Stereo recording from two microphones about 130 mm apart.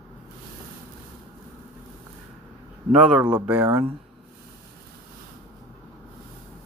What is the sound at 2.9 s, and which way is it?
Speech, 5° right (ahead or behind).